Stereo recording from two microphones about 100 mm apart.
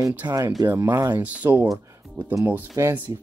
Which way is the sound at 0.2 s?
40° right (ahead or behind).